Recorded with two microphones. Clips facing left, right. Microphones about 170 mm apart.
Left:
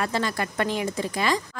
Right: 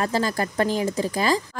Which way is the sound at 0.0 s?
40° right (ahead or behind).